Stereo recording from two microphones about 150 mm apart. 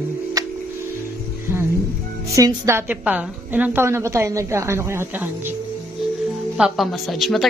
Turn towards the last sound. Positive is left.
turn(degrees=0)  # may be behind; listen again after turning